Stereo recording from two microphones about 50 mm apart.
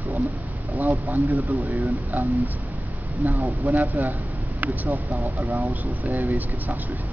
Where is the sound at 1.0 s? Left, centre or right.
Right.